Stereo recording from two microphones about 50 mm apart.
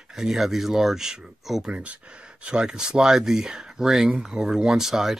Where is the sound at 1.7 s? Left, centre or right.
Right.